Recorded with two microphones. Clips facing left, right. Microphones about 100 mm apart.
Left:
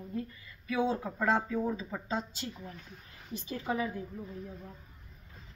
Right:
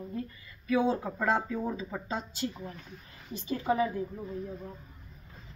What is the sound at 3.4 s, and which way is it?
Speech, 35° right (ahead or behind).